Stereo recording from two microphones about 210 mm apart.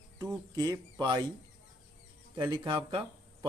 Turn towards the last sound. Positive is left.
turn(degrees=-25)  # may be behind; listen again after turning